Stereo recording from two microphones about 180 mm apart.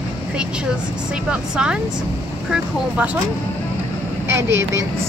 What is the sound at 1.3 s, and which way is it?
Speech, 5° right (ahead or behind).